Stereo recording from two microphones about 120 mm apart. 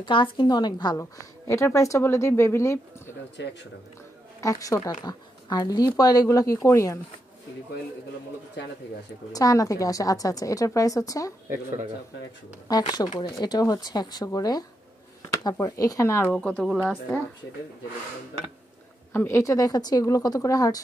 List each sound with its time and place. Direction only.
0.0 s speech: 45° left (ahead or behind)
0.9 s a woman's voice: 25° left (ahead or behind)
4.4 s a woman's voice: 30° left (ahead or behind)
9.3 s a woman's voice: 30° left (ahead or behind)
12.6 s speech: 35° left (ahead or behind)
15.6 s a woman's voice: 30° left (ahead or behind)
16.3 s speech: 10° left (ahead or behind)
19.1 s a woman's voice: 20° left (ahead or behind)